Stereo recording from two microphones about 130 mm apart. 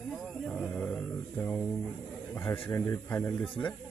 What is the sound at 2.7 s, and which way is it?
Speech, 20° left (ahead or behind).